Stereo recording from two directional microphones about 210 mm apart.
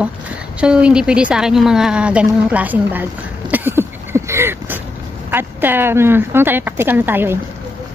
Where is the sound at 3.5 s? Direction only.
10° right (ahead or behind).